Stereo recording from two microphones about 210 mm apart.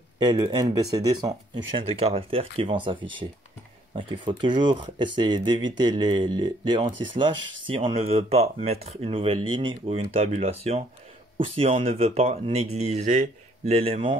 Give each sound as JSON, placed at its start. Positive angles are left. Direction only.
{"t": 0.2, "sound": "speech", "side_deg": -20}